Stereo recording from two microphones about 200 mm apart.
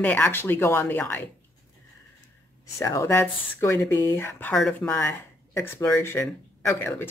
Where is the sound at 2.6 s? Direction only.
15° left (ahead or behind).